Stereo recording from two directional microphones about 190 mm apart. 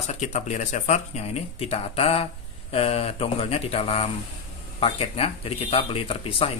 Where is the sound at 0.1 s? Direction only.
40° left (ahead or behind).